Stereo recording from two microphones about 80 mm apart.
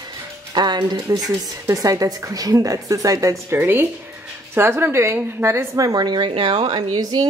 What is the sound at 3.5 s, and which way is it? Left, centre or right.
A woman's voice, right.